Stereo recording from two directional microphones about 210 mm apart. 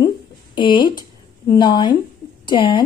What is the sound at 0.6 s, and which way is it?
A woman's voice, 25° left (ahead or behind).